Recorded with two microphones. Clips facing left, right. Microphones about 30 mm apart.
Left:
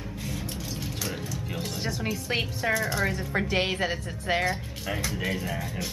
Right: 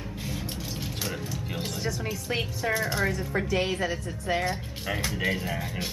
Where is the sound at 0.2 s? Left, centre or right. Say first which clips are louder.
Even; centre.